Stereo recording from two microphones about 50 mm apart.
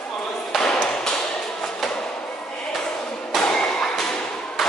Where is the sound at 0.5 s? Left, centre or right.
Centre.